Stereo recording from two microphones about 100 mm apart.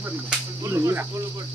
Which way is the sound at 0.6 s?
30° right (ahead or behind).